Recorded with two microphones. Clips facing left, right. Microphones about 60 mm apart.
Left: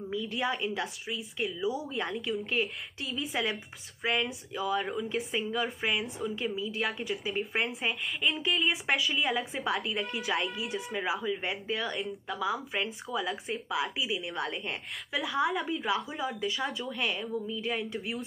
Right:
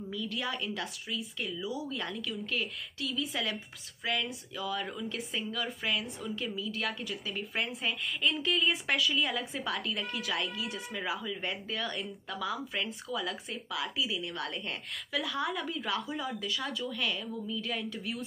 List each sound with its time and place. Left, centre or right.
0.1 s a woman's voice: left